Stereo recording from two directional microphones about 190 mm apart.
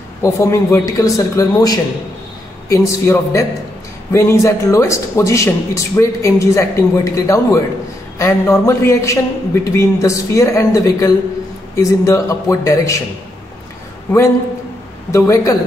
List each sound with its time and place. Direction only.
0.2 s a man's voice: 15° left (ahead or behind)
15.0 s a man's voice: 15° left (ahead or behind)